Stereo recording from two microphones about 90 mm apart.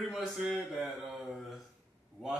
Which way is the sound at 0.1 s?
Centre (ahead or behind).